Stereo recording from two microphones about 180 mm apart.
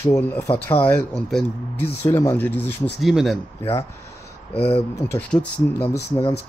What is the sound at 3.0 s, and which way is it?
Speech, centre (ahead or behind).